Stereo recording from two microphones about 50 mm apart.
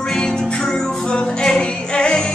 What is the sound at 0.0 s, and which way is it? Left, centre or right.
Music, centre.